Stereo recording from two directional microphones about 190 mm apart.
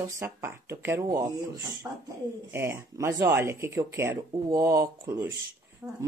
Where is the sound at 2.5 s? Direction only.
15° right (ahead or behind).